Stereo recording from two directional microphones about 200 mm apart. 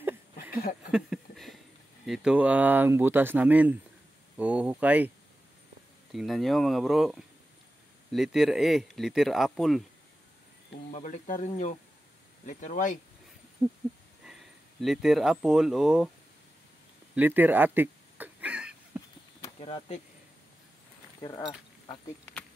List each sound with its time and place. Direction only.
0.9 s a sound: centre (ahead or behind)
2.0 s speech: 5° right (ahead or behind)
6.1 s speech: centre (ahead or behind)
10.9 s speech: 40° left (ahead or behind)
14.2 s speech: centre (ahead or behind)
17.1 s a sound: 10° right (ahead or behind)
19.6 s speech: 30° left (ahead or behind)
21.2 s speech: 20° left (ahead or behind)